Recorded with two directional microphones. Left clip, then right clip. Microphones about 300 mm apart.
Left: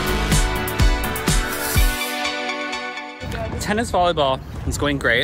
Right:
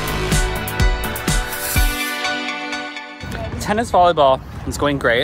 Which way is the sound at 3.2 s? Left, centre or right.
Centre.